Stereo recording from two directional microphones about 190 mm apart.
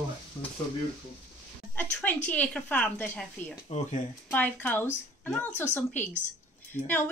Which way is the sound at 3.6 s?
35° left (ahead or behind).